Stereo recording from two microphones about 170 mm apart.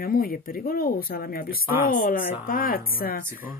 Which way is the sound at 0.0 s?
60° left (ahead or behind).